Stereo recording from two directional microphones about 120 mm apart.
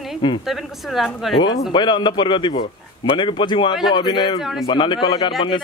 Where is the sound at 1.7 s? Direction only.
40° left (ahead or behind).